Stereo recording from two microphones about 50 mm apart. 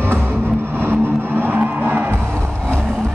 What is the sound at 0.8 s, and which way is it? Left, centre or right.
Vehicle, right.